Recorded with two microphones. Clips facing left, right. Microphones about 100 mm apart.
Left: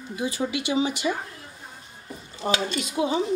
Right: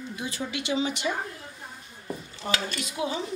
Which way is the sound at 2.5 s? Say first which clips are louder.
Left 5 dB; 25° left (ahead or behind).